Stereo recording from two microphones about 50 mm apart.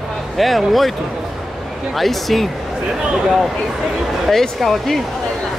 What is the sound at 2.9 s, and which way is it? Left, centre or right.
Speech, centre.